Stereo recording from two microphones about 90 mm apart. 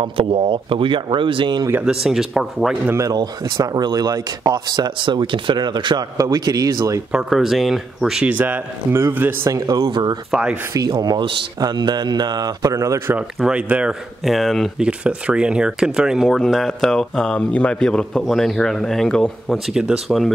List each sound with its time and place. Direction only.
0.0 s speech: 80° right
1.9 s speech: 5° right (ahead or behind)
3.1 s speech: 55° right (ahead or behind)
6.1 s speech: 40° right (ahead or behind)
7.1 s speech: 5° right (ahead or behind)
8.3 s a man's voice: 20° right (ahead or behind)
9.5 s speech: 35° right (ahead or behind)
9.8 s speech: 60° right (ahead or behind)
10.3 s speech: 10° right (ahead or behind)
11.0 s speech: 45° right (ahead or behind)
13.4 s speech: 15° right (ahead or behind)
14.2 s speech: centre (ahead or behind)
14.8 s a man's voice: 10° right (ahead or behind); by 19.3 s 10° left (ahead or behind)
19.5 s speech: 5° right (ahead or behind)